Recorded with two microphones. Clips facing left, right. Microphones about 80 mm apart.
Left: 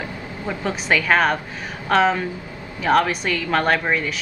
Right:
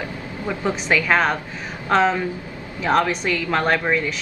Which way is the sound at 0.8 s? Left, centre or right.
Centre.